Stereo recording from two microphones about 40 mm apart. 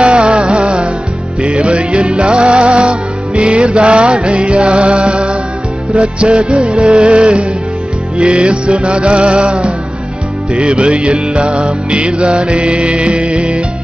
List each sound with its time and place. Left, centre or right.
0.0 s music: right